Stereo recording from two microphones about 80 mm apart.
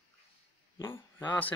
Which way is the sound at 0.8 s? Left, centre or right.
Left.